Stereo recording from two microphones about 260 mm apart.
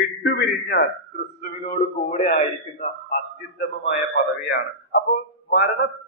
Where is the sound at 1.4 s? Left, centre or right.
Left.